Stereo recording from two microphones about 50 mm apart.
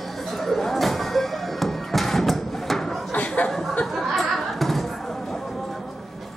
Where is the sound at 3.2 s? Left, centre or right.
Left.